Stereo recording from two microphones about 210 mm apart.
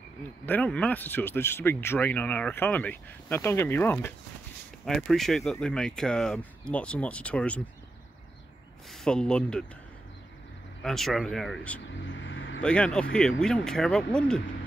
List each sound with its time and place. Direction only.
0.5 s speech: 5° left (ahead or behind)
8.9 s speech: 5° left (ahead or behind)
10.8 s speech: centre (ahead or behind)
12.1 s vehicle: 60° left (ahead or behind)
12.6 s speech: 5° left (ahead or behind)